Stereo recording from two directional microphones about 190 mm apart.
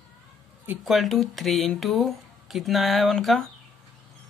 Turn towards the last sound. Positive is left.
turn(degrees=0)  # may be behind; listen again after turning